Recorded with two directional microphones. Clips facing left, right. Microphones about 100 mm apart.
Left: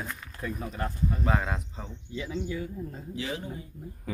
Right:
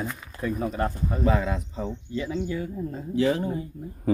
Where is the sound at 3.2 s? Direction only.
50° right (ahead or behind).